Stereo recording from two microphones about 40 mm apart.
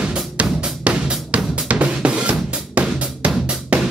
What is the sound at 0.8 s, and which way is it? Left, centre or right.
Drum kit, right.